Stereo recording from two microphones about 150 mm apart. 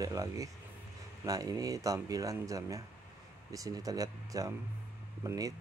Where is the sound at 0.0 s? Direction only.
25° right (ahead or behind).